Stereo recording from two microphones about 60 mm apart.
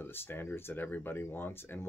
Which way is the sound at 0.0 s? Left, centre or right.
Left.